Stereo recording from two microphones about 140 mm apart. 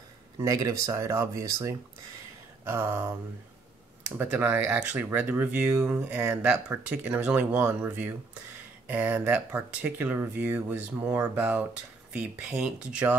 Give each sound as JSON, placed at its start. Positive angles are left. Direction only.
{"t": 0.4, "sound": "speech", "side_deg": -25}
{"t": 4.0, "sound": "speech", "side_deg": -15}